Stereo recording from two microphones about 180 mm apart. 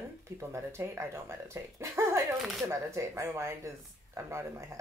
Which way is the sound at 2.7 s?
15° right (ahead or behind).